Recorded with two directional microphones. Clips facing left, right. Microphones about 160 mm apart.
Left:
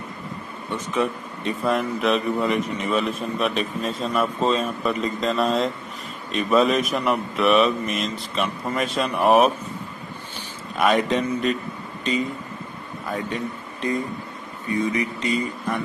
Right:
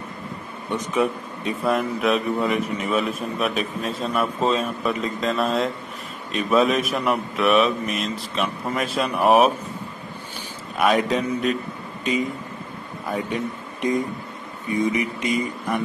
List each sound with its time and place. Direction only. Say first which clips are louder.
0.7 s a man's voice: right 2 dB; 15° right (ahead or behind)
10.8 s a man's voice: even; centre (ahead or behind)
13.3 s speech: right 2 dB; 15° right (ahead or behind)